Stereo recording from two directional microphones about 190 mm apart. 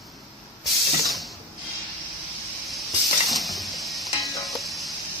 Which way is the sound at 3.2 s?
Centre (ahead or behind).